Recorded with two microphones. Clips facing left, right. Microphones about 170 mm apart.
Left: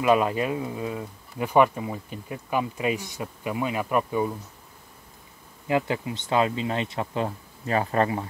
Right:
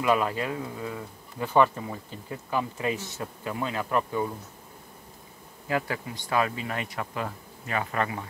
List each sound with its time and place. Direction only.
0.0 s speech: 20° left (ahead or behind)
5.7 s speech: 20° left (ahead or behind)